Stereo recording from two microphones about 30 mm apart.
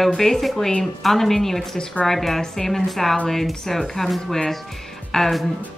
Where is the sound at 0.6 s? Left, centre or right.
Left.